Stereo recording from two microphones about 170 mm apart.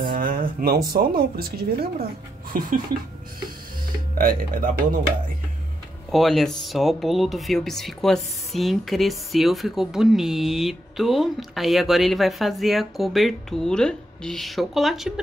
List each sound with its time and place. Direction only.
0.1 s speech: 55° right (ahead or behind)
4.2 s speech: 55° right (ahead or behind)
6.1 s speech: centre (ahead or behind)